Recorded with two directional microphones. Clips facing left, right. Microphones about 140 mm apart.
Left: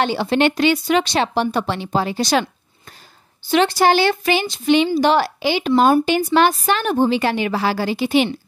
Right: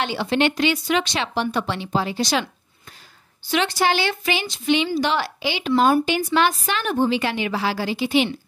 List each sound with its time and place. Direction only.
0.0 s a woman's voice: 40° left (ahead or behind)
3.4 s a woman's voice: 35° left (ahead or behind)